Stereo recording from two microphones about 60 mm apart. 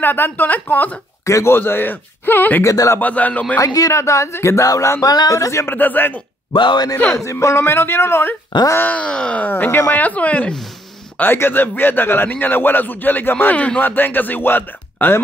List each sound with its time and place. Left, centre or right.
0.0 s speech: left
1.2 s speech: left
1.6 s speech: left
2.6 s speech: left
3.0 s speech: left
3.5 s speech: left
4.6 s speech: left
5.7 s a man's voice: left
7.2 s a man's voice: left
8.7 s speech: left
9.5 s a man's voice: left
11.3 s a man's voice: left